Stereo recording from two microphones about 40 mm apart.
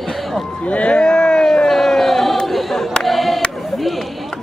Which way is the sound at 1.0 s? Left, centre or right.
Centre.